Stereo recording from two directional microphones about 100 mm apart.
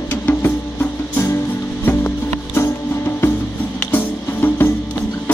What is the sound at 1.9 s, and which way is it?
Music, 20° left (ahead or behind).